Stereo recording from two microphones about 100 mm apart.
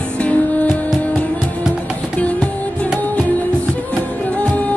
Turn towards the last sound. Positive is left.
turn(degrees=15)  # may be behind; listen again after turning